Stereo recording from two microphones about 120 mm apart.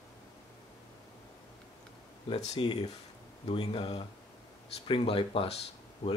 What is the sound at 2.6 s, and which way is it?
Speech, 40° left (ahead or behind).